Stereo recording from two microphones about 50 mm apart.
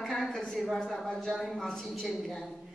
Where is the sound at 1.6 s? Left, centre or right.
Centre.